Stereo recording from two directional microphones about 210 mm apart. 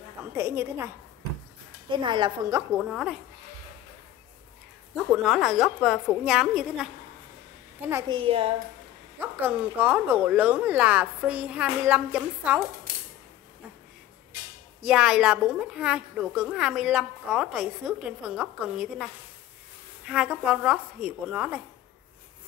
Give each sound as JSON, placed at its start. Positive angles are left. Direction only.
{"t": 0.3, "sound": "speech", "side_deg": -10}
{"t": 1.9, "sound": "a woman's voice", "side_deg": -20}
{"t": 2.7, "sound": "a woman's voice", "side_deg": -5}
{"t": 5.1, "sound": "a woman's voice", "side_deg": 0}
{"t": 7.9, "sound": "a woman's voice", "side_deg": -25}
{"t": 9.2, "sound": "speech", "side_deg": -10}
{"t": 14.8, "sound": "a woman's voice", "side_deg": -5}
{"t": 20.1, "sound": "a woman's voice", "side_deg": -5}